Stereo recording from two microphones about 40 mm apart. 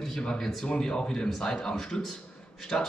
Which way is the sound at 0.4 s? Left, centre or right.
Centre.